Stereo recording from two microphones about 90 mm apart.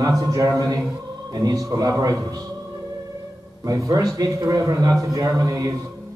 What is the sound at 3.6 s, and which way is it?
A man's voice, 40° right (ahead or behind).